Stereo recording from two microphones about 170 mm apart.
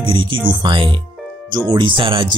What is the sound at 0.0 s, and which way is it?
Speech, 30° right (ahead or behind).